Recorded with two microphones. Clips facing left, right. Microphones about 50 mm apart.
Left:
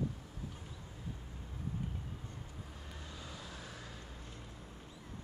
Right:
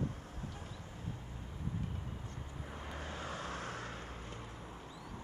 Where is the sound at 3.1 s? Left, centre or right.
Right.